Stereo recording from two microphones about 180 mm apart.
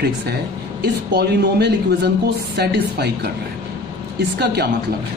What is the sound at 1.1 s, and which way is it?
A woman's voice, 65° right (ahead or behind).